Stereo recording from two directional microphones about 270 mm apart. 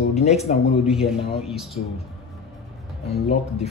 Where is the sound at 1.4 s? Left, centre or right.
Centre.